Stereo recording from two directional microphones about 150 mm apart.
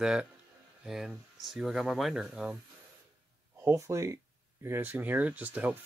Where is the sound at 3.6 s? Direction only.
20° right (ahead or behind).